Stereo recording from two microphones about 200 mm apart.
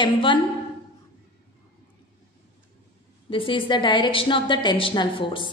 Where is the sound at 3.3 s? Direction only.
25° left (ahead or behind).